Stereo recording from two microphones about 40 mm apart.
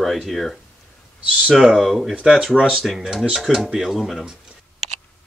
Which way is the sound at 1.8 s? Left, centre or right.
Centre.